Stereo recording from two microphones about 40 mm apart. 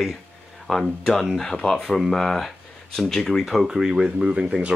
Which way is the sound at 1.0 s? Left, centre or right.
Centre.